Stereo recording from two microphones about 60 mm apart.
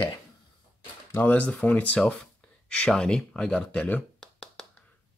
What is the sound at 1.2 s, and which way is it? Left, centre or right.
Speech, left.